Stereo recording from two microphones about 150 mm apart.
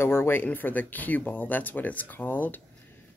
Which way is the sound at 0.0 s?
15° left (ahead or behind).